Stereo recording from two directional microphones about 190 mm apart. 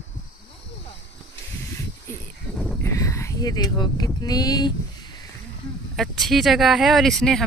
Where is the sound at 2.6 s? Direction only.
15° left (ahead or behind).